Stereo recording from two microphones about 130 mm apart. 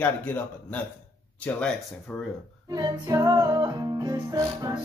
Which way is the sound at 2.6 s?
30° right (ahead or behind).